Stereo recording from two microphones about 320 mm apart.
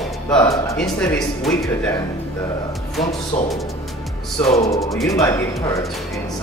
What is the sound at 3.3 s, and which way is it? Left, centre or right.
Speech, left.